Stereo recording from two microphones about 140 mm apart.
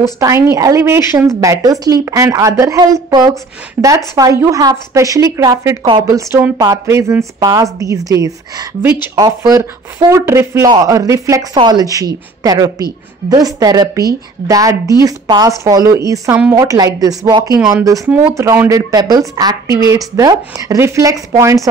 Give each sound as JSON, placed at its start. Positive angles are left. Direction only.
{"t": 0.2, "sound": "a woman's voice", "side_deg": -20}